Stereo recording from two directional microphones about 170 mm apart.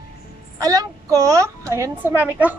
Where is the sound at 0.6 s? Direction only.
20° right (ahead or behind).